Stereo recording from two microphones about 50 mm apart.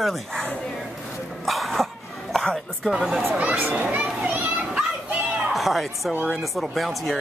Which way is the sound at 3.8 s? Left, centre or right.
Right.